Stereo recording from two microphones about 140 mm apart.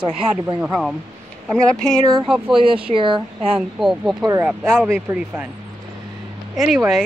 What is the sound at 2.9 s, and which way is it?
Speech, 35° right (ahead or behind).